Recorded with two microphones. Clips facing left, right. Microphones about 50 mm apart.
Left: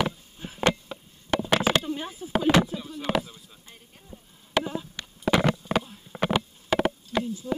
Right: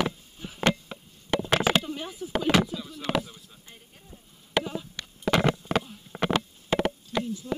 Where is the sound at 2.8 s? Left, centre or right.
Centre.